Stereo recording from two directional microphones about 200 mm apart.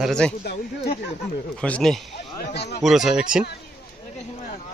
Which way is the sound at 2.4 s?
55° left (ahead or behind).